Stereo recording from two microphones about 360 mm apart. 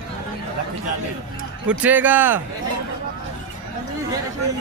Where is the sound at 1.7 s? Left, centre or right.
Centre.